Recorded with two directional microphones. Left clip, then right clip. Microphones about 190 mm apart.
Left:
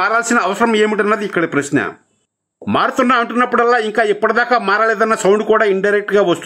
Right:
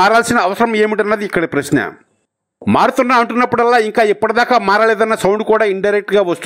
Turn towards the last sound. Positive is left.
turn(degrees=-25)  # may be behind; listen again after turning